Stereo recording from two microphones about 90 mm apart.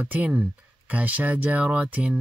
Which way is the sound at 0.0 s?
15° right (ahead or behind).